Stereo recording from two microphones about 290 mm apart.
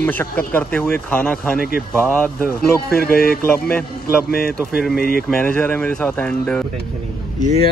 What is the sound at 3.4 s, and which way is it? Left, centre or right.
Speech, centre.